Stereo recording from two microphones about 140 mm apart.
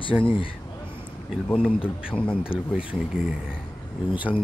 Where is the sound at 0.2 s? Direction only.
40° left (ahead or behind).